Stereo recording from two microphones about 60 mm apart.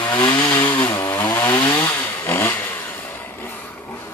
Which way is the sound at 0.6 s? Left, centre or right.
Left.